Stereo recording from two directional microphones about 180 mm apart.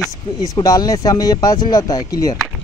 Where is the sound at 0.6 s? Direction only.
20° left (ahead or behind).